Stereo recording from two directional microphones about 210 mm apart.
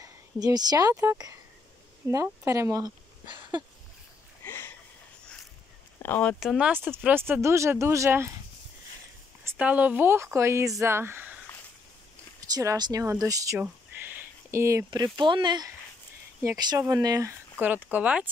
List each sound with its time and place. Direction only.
0.0 s a woman's voice: 15° right (ahead or behind)
4.5 s sniff: 10° left (ahead or behind)
5.9 s speech: 10° left (ahead or behind)
6.4 s speech: 5° right (ahead or behind)
9.4 s speech: 10° right (ahead or behind)
12.5 s speech: 20° right (ahead or behind)